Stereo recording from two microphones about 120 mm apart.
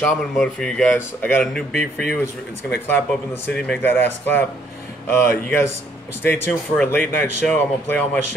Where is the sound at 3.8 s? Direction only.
15° left (ahead or behind).